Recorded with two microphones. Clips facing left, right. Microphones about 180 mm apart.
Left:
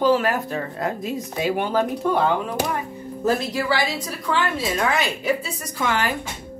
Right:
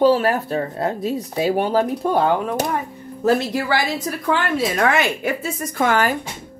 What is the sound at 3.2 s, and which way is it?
Speech, 55° right (ahead or behind).